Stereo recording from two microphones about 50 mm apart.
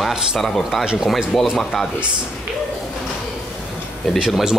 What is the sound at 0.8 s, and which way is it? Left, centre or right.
Speech, centre.